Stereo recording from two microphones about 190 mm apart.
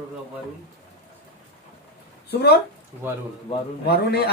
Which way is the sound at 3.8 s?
60° left (ahead or behind).